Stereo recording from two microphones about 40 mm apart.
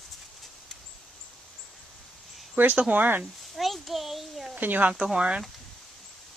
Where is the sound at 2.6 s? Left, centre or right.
Right.